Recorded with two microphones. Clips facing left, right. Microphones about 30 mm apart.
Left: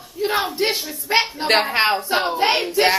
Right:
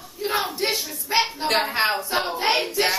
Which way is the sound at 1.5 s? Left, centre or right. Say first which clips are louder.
Left 7 dB; left.